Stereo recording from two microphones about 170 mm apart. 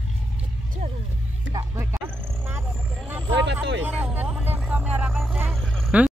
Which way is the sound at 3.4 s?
90° right.